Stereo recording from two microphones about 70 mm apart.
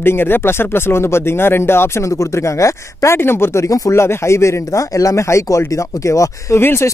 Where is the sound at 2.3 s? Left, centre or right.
Left.